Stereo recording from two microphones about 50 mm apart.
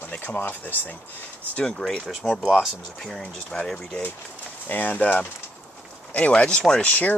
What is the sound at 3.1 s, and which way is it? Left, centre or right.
Speech, centre.